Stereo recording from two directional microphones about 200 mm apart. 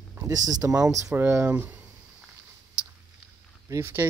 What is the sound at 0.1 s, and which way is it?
Speech, 15° right (ahead or behind).